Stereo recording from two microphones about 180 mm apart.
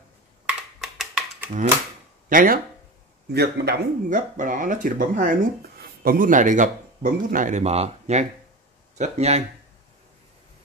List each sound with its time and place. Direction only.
0.7 s a sound: 5° right (ahead or behind)
2.2 s speech: 50° right (ahead or behind)
3.3 s speech: 60° right (ahead or behind); by 9.4 s 40° right (ahead or behind)